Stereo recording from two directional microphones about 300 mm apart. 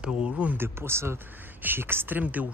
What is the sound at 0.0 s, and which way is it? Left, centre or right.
Speech, centre.